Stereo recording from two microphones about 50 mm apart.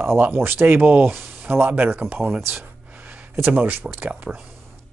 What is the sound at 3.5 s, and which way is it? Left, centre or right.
Speech, right.